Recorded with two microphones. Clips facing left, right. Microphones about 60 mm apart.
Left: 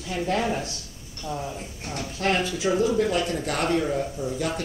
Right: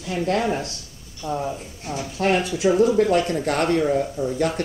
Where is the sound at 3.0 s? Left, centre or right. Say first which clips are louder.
Right 5 dB; right.